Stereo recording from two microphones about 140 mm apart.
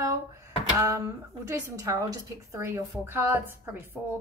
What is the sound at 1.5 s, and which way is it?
A woman's voice, 20° right (ahead or behind).